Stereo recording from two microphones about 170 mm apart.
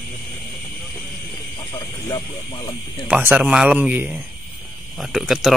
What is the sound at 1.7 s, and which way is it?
Speech, 25° left (ahead or behind).